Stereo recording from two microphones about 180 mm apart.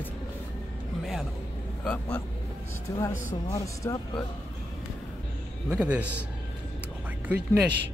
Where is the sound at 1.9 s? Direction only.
5° left (ahead or behind).